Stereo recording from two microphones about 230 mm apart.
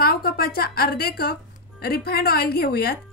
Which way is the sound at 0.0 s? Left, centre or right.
Left.